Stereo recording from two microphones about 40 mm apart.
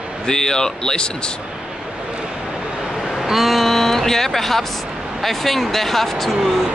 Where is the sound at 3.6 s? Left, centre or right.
Centre.